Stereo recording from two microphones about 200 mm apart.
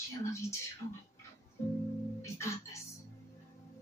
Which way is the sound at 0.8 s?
35° left (ahead or behind).